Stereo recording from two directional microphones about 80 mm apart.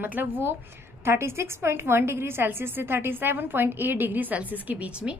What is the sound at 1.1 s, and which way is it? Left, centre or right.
A woman's voice, right.